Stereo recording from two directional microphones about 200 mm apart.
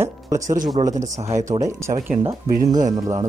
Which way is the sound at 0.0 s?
15° right (ahead or behind).